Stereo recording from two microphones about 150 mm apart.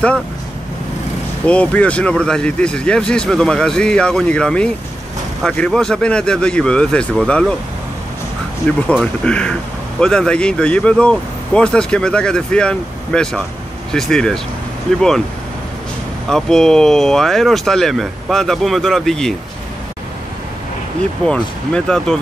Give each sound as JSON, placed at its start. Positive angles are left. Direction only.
{"t": 1.4, "sound": "speech", "side_deg": 10}
{"t": 8.6, "sound": "speech", "side_deg": 10}
{"t": 16.3, "sound": "speech", "side_deg": 5}
{"t": 21.3, "sound": "speech", "side_deg": 5}